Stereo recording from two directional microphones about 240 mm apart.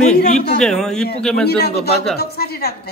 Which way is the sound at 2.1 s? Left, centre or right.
Left.